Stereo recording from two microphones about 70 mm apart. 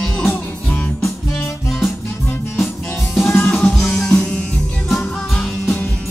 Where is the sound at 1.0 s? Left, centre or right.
Centre.